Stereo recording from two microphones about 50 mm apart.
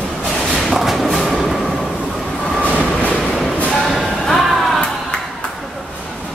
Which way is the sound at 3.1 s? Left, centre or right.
Centre.